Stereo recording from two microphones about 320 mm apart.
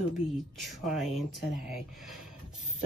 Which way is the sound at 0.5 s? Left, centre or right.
Centre.